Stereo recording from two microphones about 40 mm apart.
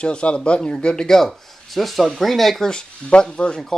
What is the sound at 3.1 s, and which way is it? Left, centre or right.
Speech, left.